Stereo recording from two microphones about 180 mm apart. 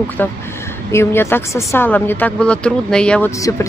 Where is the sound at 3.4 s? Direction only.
20° left (ahead or behind).